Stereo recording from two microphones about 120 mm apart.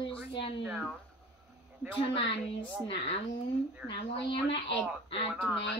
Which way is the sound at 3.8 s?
45° left (ahead or behind).